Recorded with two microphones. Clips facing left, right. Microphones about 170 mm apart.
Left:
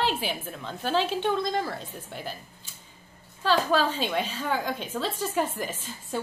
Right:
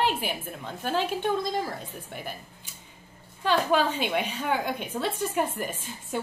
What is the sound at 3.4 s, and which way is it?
A woman's voice, 15° right (ahead or behind).